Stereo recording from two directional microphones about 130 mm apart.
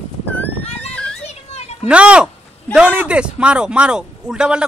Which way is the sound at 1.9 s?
10° right (ahead or behind).